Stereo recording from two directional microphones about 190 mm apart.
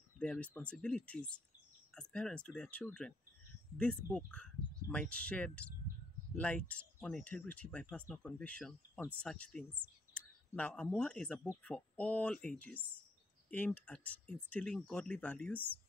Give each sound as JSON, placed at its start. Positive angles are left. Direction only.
{"t": 0.2, "sound": "speech", "side_deg": 5}